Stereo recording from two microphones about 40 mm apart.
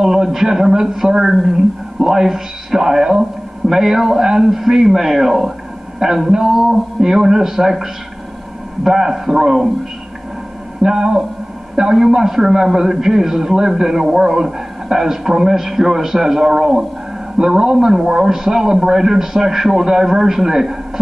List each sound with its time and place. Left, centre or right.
0.0 s a man's voice: centre
10.8 s a man's voice: centre